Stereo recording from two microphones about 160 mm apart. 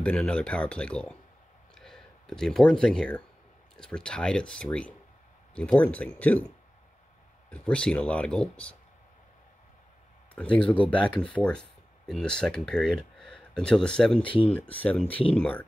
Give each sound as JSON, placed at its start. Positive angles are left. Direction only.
{"t": 0.0, "sound": "speech", "side_deg": 5}
{"t": 7.5, "sound": "speech", "side_deg": 5}
{"t": 10.3, "sound": "speech", "side_deg": 10}
{"t": 14.2, "sound": "speech", "side_deg": 30}
{"t": 14.5, "sound": "speech", "side_deg": 10}